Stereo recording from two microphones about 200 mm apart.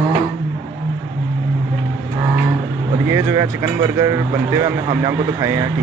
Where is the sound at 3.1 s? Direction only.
15° right (ahead or behind).